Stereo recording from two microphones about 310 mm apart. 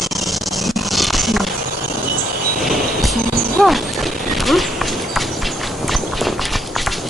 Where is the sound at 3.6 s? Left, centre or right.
Centre.